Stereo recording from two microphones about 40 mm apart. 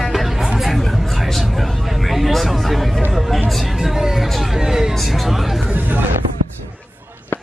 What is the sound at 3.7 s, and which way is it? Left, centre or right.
Speech, centre.